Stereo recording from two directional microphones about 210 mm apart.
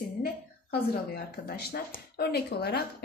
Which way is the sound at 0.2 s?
45° left (ahead or behind).